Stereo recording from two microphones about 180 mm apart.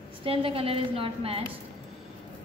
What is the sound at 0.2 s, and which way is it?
A woman's voice, 30° right (ahead or behind).